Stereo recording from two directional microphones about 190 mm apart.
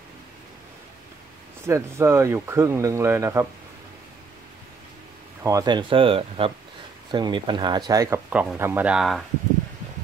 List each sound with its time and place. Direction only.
1.7 s speech: 15° right (ahead or behind)
5.4 s speech: 15° right (ahead or behind)
8.3 s speech: 5° right (ahead or behind)